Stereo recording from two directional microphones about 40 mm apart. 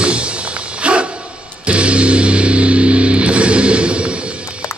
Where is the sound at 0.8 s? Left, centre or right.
Right.